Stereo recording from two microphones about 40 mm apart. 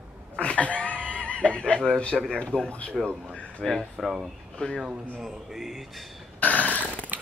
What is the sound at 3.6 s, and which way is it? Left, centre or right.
Speech, centre.